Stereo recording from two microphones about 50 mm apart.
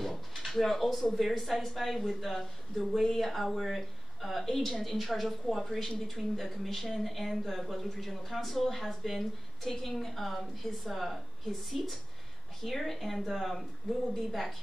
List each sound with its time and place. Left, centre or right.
0.0 s speech: centre